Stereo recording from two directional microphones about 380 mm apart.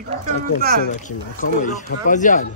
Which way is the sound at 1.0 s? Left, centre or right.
Centre.